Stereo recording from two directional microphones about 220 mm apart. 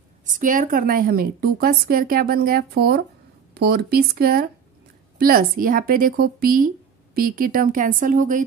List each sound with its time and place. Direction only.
0.3 s a woman's voice: 35° right (ahead or behind)